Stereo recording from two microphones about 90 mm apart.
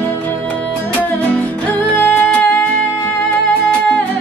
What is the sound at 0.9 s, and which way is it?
Music, 15° left (ahead or behind).